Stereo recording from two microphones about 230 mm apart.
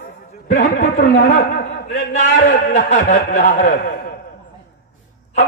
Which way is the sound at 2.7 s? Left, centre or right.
Left.